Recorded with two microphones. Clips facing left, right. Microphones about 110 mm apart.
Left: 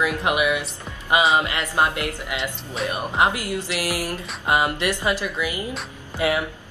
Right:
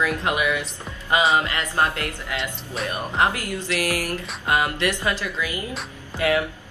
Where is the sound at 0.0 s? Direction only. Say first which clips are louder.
Left 1 dB; 15° left (ahead or behind).